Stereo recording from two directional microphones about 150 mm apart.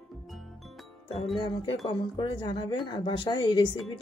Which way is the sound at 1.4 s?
30° left (ahead or behind).